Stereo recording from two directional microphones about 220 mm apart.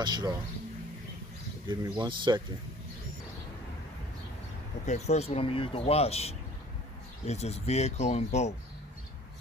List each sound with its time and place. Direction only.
0.0 s speech: 20° right (ahead or behind)
1.7 s speech: 20° right (ahead or behind)
4.8 s speech: 30° left (ahead or behind)